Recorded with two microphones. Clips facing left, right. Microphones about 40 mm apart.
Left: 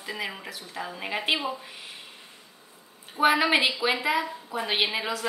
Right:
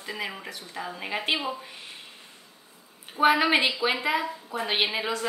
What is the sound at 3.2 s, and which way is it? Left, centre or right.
A woman's voice, centre.